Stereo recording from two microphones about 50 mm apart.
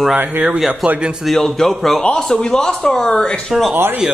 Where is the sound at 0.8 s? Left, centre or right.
Centre.